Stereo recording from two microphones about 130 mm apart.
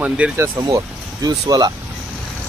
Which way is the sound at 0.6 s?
25° right (ahead or behind).